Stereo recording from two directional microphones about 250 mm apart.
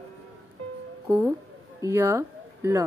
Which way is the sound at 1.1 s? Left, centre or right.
Centre.